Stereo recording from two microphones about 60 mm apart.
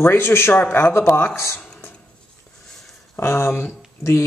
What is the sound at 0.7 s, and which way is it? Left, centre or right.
Speech, left.